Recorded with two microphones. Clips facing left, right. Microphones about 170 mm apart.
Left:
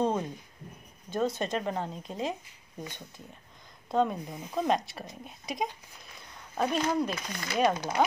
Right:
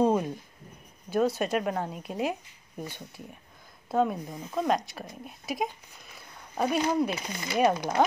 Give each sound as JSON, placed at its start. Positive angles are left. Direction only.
{"t": 0.0, "sound": "writing", "side_deg": -10}
{"t": 1.1, "sound": "speech", "side_deg": -5}
{"t": 3.9, "sound": "speech", "side_deg": -5}
{"t": 7.1, "sound": "speech", "side_deg": -20}
{"t": 7.4, "sound": "speech", "side_deg": -5}